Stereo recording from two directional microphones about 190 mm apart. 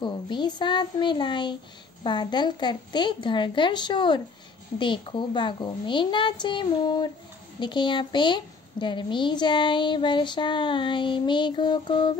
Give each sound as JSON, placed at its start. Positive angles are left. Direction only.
{"t": 0.0, "sound": "a woman's voice", "side_deg": 25}